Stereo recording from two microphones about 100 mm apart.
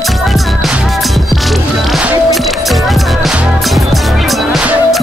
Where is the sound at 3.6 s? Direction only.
Centre (ahead or behind).